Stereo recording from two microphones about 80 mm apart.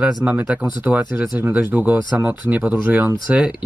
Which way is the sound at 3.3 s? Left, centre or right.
Centre.